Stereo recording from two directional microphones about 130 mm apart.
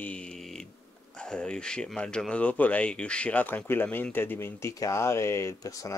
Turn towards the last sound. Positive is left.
turn(degrees=25)  # may be behind; listen again after turning